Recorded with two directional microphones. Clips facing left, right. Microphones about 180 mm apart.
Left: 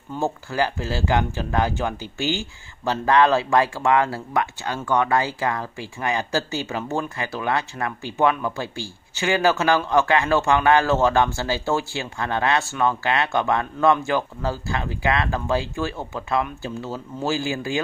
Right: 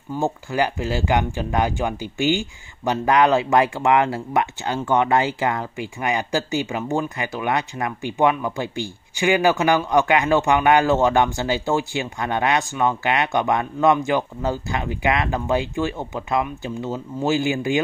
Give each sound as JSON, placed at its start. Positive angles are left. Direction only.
{"t": 0.2, "sound": "speech", "side_deg": -15}